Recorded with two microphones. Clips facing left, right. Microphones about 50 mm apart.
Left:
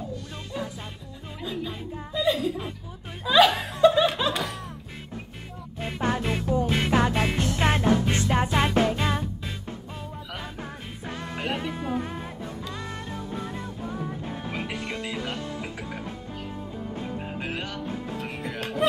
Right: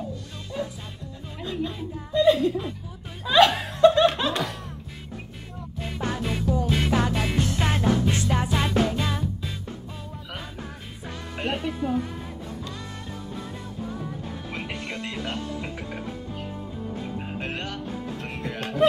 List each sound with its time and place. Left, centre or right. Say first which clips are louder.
1.4 s music: right 3 dB; centre
2.1 s speech: right 6 dB; centre
3.3 s music: right 1 dB; centre
5.8 s music: left 3 dB; left
11.3 s music: right 2 dB; centre
14.5 s music: even; centre
17.4 s music: right 1 dB; centre